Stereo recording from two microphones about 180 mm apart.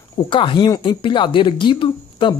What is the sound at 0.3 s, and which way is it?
Speech, 30° left (ahead or behind).